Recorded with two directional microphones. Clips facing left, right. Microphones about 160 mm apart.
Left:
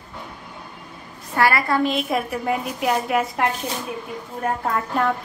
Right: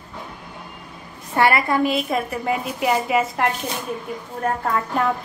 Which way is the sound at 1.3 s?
25° right (ahead or behind).